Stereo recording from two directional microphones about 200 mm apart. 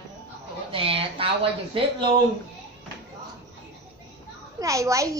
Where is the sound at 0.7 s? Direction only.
25° right (ahead or behind).